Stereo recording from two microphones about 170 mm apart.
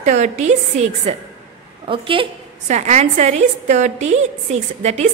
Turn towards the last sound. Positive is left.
turn(degrees=-40)  # may be behind; listen again after turning